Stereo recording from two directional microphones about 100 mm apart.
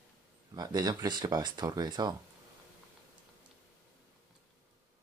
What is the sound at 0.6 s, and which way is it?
Speech, 40° right (ahead or behind).